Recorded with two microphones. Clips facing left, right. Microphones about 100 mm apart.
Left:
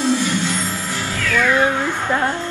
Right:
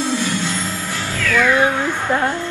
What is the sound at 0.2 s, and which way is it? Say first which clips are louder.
Music: left 1 dB; 15° left (ahead or behind).